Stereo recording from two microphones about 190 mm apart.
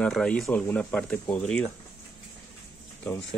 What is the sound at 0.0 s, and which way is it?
Speech, 5° left (ahead or behind).